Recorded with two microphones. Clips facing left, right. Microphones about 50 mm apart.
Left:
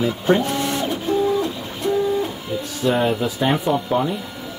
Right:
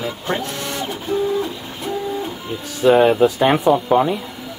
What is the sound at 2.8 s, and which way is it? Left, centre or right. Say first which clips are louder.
Speech: right 7 dB; right.